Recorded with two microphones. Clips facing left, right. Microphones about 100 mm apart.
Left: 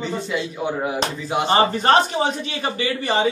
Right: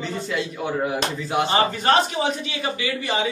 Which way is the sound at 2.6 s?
40° left (ahead or behind).